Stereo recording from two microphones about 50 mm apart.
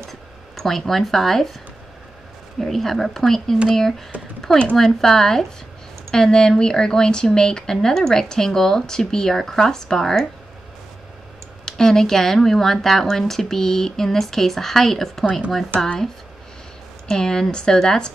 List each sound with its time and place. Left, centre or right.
0.1 s a sound: centre
2.6 s speech: centre
4.1 s speech: right
4.7 s speech: centre
11.6 s speech: centre
17.1 s speech: centre